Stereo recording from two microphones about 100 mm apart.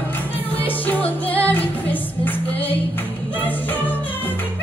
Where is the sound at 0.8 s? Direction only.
15° left (ahead or behind).